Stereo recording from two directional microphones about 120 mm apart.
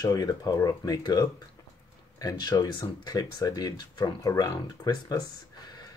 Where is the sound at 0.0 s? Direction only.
30° left (ahead or behind).